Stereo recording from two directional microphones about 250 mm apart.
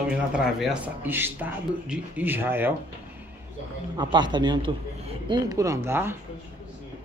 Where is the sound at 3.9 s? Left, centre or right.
Centre.